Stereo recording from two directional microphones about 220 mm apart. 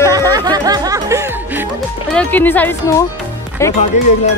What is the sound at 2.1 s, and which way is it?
Speech, 5° left (ahead or behind).